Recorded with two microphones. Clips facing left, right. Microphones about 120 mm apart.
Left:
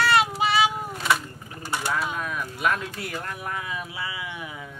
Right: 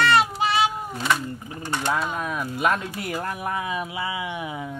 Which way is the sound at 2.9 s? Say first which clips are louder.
Right 4 dB; 15° right (ahead or behind).